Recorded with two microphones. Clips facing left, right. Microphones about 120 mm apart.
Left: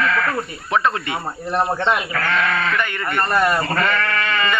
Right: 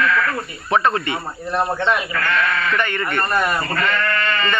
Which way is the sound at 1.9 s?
25° left (ahead or behind).